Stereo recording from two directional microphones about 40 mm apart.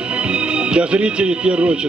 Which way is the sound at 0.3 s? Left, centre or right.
Right.